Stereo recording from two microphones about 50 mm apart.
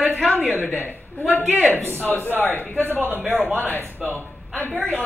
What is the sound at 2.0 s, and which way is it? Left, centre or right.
Speech, left.